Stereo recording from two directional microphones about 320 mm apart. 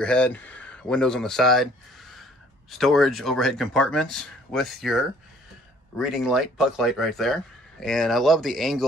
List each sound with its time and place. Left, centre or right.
0.0 s speech: centre
2.8 s speech: centre